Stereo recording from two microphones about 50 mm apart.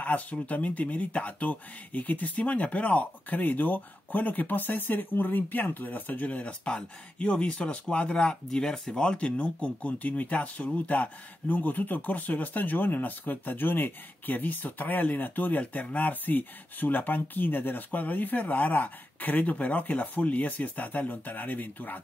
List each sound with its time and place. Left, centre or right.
0.0 s speech: left; by 9.0 s centre
9.0 s speech: left